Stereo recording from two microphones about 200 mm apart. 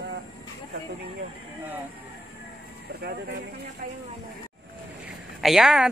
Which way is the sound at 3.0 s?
50° right (ahead or behind).